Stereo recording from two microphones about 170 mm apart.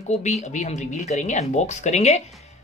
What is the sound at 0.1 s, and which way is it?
Speech, 40° left (ahead or behind).